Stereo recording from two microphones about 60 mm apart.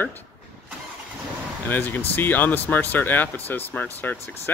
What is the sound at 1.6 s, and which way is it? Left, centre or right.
Speech, left.